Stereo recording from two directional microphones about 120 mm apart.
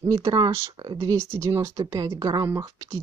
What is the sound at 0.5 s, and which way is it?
Speech, 20° right (ahead or behind).